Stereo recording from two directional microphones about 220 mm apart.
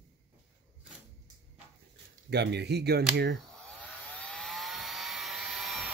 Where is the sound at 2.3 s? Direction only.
50° right (ahead or behind).